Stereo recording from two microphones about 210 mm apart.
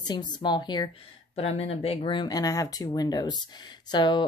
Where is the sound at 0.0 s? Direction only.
20° left (ahead or behind).